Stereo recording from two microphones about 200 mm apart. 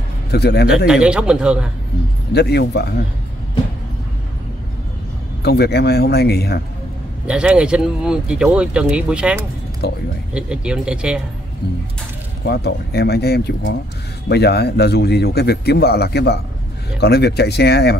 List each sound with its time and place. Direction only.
0.3 s speech: 55° left (ahead or behind)
0.8 s speech: 5° right (ahead or behind)
2.3 s speech: 55° left (ahead or behind)
5.4 s speech: 55° left (ahead or behind)
7.2 s speech: 5° right (ahead or behind)
9.8 s speech: 55° left (ahead or behind)
10.3 s speech: 5° right (ahead or behind)
12.4 s a man's voice: 55° left (ahead or behind)